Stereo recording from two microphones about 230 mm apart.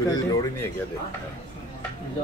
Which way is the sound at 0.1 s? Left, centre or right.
Centre.